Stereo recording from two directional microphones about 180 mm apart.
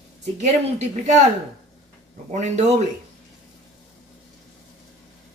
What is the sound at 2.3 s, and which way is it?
Speech, 40° right (ahead or behind).